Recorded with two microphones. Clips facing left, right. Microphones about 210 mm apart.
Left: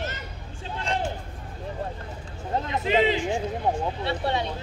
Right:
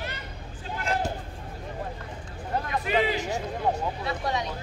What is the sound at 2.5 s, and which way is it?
Vehicle, 20° left (ahead or behind).